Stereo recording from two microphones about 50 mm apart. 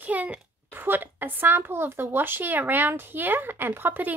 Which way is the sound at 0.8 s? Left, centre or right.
Right.